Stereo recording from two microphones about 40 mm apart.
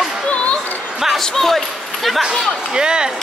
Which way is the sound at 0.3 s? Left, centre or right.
Left.